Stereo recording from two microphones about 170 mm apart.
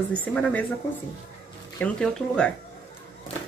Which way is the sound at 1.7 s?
5° left (ahead or behind).